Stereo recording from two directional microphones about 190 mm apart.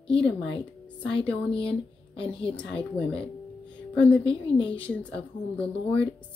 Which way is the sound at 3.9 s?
5° left (ahead or behind).